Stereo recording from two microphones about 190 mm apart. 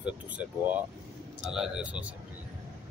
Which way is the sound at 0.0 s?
5° right (ahead or behind).